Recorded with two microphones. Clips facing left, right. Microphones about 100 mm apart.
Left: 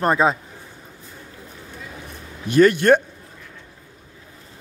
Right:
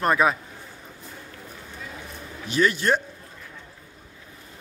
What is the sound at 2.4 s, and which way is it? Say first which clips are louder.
Speech: left 8 dB; 50° left (ahead or behind).